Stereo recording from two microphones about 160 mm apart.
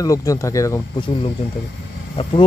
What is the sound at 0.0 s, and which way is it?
Speech, 20° left (ahead or behind).